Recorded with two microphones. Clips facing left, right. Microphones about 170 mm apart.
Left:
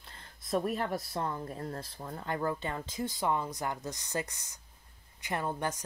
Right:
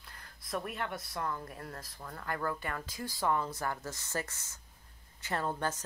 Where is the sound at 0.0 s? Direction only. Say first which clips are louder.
Left 1 dB; 25° left (ahead or behind).